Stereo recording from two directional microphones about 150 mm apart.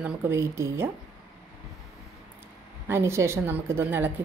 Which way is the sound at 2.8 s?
15° right (ahead or behind).